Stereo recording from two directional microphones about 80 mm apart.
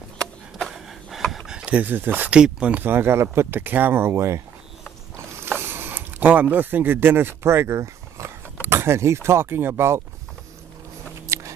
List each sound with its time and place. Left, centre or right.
0.7 s a sound: centre
2.8 s speech: right
5.1 s mechanisms: right
5.5 s speech: right
11.2 s music: right